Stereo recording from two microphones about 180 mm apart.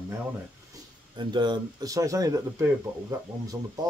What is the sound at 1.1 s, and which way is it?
Speech, 25° right (ahead or behind).